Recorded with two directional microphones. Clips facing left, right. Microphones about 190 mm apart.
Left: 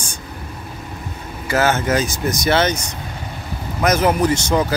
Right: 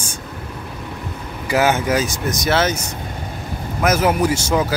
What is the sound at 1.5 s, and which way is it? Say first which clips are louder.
Speech: right 1 dB; 15° right (ahead or behind).